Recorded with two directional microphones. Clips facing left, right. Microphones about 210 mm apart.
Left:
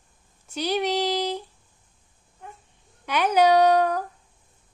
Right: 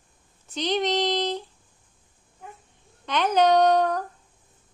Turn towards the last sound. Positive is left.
turn(degrees=10)  # may be behind; listen again after turning